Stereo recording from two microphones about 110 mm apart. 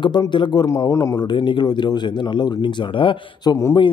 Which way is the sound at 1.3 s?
45° left (ahead or behind).